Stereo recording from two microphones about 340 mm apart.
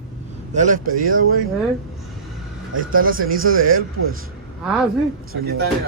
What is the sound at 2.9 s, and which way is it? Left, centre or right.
Speech, right.